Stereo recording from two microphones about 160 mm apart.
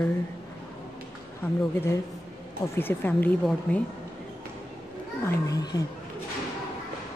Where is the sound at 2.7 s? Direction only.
10° left (ahead or behind).